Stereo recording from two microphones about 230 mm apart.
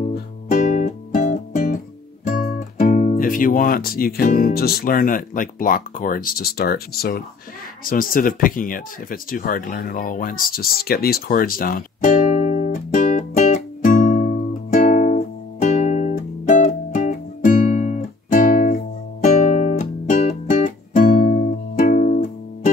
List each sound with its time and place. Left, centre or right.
0.1 s music: left
2.2 s speech: left
7.8 s a sound: left
19.2 s music: left